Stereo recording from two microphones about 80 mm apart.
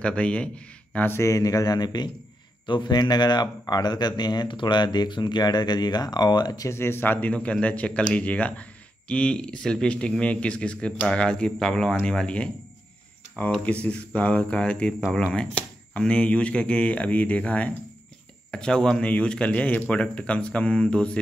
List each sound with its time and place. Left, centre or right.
0.0 s speech: centre
1.2 s speech: left
2.6 s speech: left
6.7 s speech: left; by 12.4 s centre
13.8 s speech: centre